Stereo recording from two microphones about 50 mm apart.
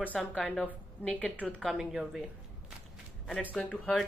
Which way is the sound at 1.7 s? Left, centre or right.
Centre.